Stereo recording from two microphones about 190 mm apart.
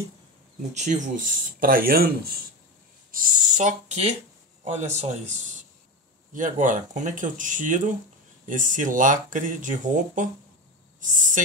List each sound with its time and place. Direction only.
0.7 s speech: 40° right (ahead or behind)